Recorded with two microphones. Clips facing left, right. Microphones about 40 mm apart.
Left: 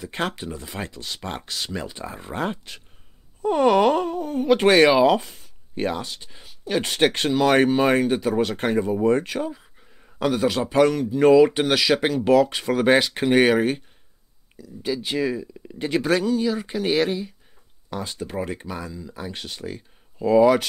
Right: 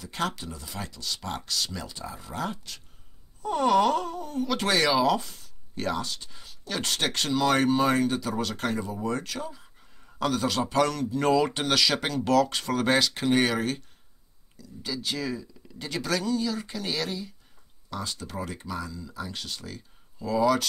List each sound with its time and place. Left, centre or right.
0.0 s speech: left